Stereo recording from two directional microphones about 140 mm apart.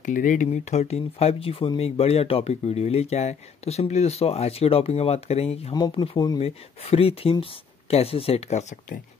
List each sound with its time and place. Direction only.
0.0 s speech: 70° left (ahead or behind); by 6.4 s 30° left (ahead or behind)
6.4 s speech: 45° left (ahead or behind); by 9.0 s 65° left (ahead or behind)